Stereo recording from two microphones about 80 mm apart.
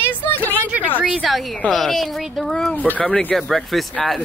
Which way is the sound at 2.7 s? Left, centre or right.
Centre.